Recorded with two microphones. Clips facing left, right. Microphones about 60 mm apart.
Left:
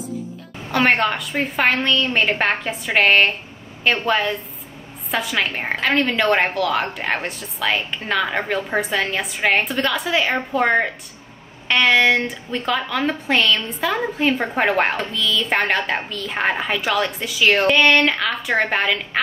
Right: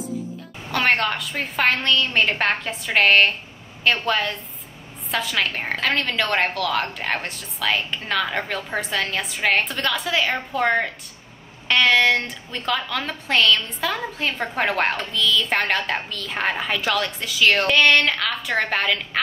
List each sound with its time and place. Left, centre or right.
0.7 s a woman's voice: centre